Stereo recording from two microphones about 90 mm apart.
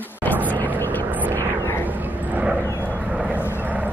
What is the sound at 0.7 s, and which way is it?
Vehicle, 25° left (ahead or behind).